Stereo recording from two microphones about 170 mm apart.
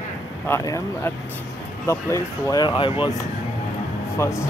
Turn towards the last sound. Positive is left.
turn(degrees=15)  # may be behind; listen again after turning